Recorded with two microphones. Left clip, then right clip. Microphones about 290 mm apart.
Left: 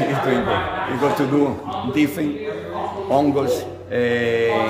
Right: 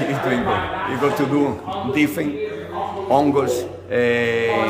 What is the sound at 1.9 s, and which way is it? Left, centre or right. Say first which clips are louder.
A man's voice: right 1 dB; centre.